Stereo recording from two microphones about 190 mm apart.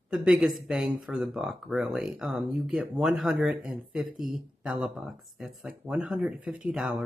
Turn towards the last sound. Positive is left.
turn(degrees=-5)  # may be behind; listen again after turning